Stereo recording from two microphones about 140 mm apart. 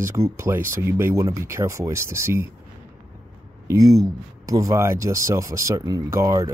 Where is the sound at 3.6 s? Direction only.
25° right (ahead or behind).